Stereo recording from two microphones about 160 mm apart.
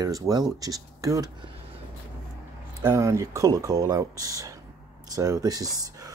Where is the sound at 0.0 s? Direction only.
25° right (ahead or behind).